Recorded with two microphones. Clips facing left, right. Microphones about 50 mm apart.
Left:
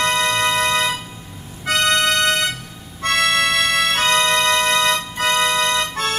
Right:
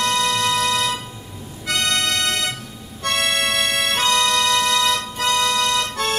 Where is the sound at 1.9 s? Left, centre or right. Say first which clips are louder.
Left 5 dB; left.